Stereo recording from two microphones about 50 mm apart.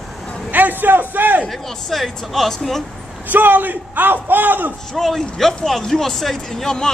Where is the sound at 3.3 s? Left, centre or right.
Right.